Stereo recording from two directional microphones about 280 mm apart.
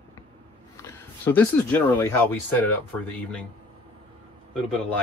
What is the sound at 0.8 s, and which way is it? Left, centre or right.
Speech, centre.